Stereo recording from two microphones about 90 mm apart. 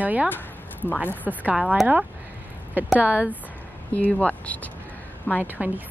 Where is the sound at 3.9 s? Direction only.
15° left (ahead or behind).